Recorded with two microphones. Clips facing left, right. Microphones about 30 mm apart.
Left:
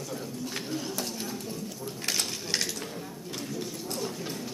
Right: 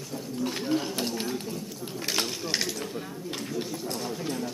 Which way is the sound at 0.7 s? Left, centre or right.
Right.